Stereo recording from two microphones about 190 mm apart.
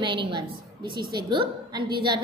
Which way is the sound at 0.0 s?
25° right (ahead or behind).